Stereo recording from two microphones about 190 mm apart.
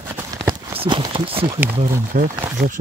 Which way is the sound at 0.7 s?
25° right (ahead or behind).